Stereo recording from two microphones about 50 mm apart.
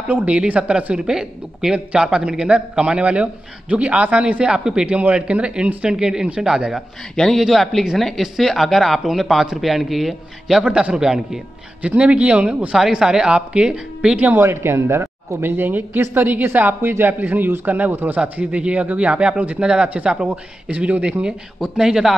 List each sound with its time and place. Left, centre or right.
0.1 s a man's voice: right
7.3 s speech: centre
10.6 s a man's voice: right
14.4 s speech: right
21.7 s a man's voice: centre